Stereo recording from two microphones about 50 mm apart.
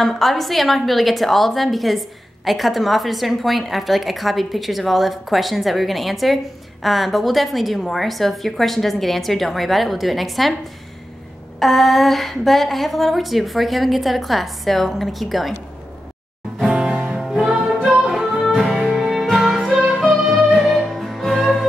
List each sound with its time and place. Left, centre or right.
0.0 s a woman's voice: centre
11.6 s a woman's voice: centre
16.6 s music: centre
18.5 s music: centre
19.4 s music: centre